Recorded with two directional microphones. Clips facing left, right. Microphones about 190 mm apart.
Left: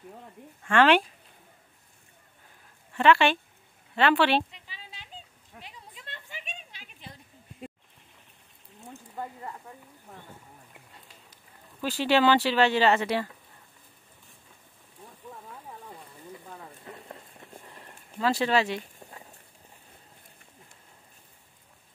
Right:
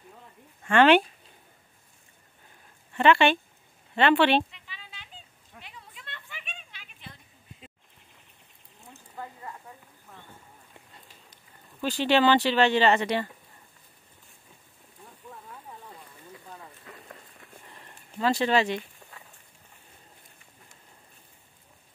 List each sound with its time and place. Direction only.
0.7 s speech: centre (ahead or behind)
3.0 s speech: centre (ahead or behind)
4.5 s a sound: 35° left (ahead or behind)
11.8 s speech: 5° left (ahead or behind)
18.2 s speech: 5° left (ahead or behind)
18.8 s walk: 30° left (ahead or behind)